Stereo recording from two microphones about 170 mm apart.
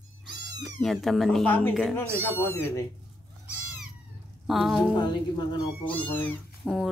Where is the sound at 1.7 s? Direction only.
Centre (ahead or behind).